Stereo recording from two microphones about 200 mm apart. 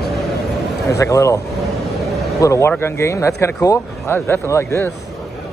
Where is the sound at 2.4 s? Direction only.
15° left (ahead or behind).